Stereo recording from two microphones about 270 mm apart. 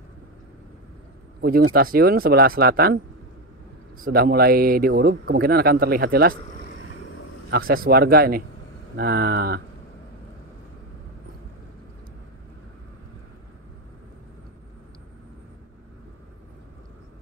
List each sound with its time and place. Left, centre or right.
1.4 s speech: right
4.0 s speech: right
7.5 s speech: right